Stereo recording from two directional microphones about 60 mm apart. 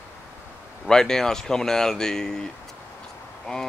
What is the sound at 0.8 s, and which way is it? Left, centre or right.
Speech, centre.